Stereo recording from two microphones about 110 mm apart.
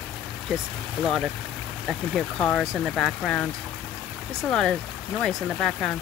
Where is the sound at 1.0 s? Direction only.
5° left (ahead or behind).